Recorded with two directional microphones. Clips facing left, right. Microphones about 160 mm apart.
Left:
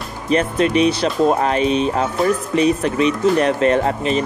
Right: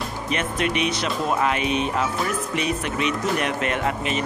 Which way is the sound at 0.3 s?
35° left (ahead or behind).